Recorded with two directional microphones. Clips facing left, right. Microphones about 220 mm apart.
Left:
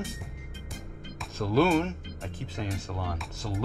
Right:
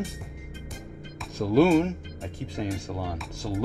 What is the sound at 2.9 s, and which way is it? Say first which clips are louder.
Speech: right 3 dB; 20° right (ahead or behind).